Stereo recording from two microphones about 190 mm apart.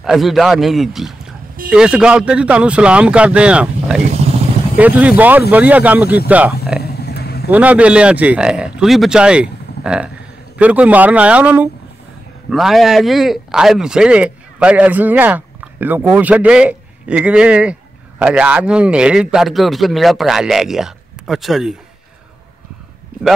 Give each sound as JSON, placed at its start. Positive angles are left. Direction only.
{"t": 0.0, "sound": "a man's voice", "side_deg": 0}
{"t": 6.8, "sound": "a sound", "side_deg": 55}
{"t": 7.4, "sound": "a man's voice", "side_deg": -10}